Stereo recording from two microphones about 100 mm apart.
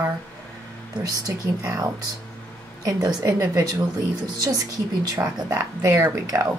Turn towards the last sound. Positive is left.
turn(degrees=-35)  # may be behind; listen again after turning